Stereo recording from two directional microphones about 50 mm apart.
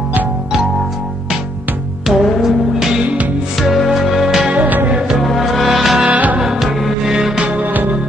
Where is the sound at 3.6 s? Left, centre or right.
Centre.